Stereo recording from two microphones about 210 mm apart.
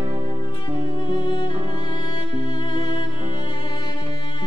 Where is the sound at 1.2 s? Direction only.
20° left (ahead or behind).